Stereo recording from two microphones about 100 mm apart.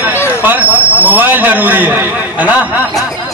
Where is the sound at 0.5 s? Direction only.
15° right (ahead or behind).